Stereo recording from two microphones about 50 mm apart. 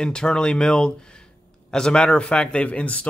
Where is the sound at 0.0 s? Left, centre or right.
Centre.